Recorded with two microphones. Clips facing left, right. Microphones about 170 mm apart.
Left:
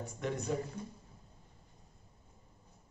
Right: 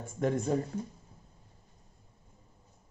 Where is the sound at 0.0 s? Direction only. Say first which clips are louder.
Right 7 dB; 50° right (ahead or behind).